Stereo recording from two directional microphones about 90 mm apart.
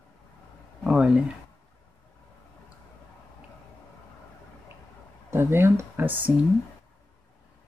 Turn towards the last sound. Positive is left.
turn(degrees=-20)  # may be behind; listen again after turning